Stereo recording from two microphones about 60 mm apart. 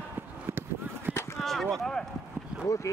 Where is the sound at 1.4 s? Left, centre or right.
Centre.